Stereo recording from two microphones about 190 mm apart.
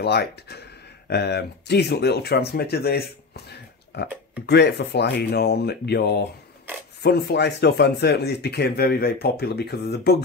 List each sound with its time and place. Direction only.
0.0 s speech: 60° left (ahead or behind)